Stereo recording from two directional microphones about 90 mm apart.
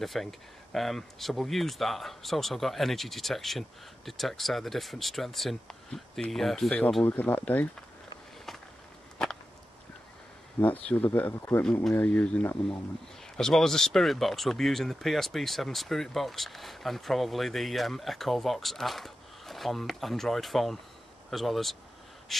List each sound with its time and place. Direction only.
0.0 s speech: centre (ahead or behind)
7.1 s speech: 20° left (ahead or behind)
9.2 s a sound: 10° left (ahead or behind)
10.6 s speech: 20° left (ahead or behind)
13.4 s speech: 5° left (ahead or behind)
22.3 s gasp: 5° left (ahead or behind)